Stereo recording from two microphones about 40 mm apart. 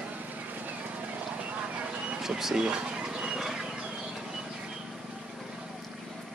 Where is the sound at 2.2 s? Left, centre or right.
Centre.